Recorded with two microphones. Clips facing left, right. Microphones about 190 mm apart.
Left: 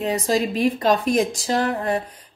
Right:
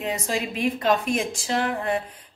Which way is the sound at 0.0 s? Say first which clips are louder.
Left 6 dB; 40° left (ahead or behind).